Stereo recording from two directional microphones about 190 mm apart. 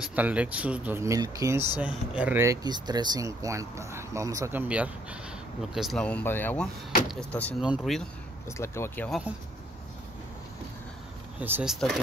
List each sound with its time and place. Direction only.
0.0 s speech: 5° right (ahead or behind)
8.5 s speech: 15° left (ahead or behind)
11.3 s speech: 10° right (ahead or behind)